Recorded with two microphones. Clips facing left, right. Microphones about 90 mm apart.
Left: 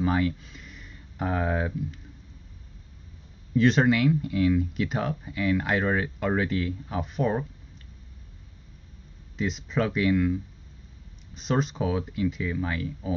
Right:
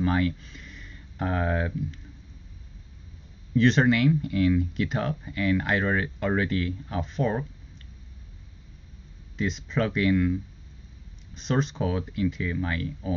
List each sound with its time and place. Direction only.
0.0 s speech: 5° left (ahead or behind)
3.5 s speech: 5° left (ahead or behind)
9.4 s speech: 5° left (ahead or behind)
11.3 s speech: 5° left (ahead or behind)